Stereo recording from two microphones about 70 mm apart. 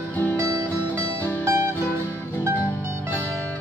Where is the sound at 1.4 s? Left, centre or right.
Right.